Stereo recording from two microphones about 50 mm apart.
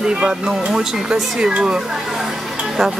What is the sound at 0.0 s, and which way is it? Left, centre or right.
Speech, centre.